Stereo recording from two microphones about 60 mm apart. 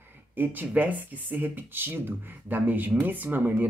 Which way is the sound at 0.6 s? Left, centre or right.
Right.